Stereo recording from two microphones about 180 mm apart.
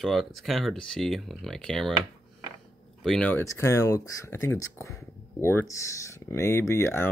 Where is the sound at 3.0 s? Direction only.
5° left (ahead or behind).